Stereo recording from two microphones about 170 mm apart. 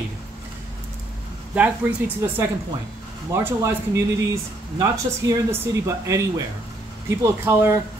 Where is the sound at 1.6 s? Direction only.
10° right (ahead or behind).